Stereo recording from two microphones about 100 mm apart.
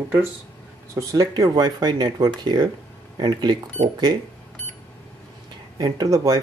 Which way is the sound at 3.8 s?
90° right.